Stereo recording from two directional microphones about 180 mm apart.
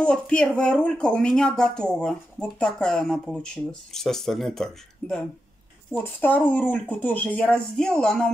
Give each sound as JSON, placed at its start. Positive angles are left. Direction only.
{"t": 0.0, "sound": "speech", "side_deg": 5}